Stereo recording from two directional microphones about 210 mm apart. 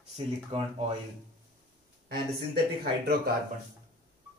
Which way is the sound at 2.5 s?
50° right (ahead or behind).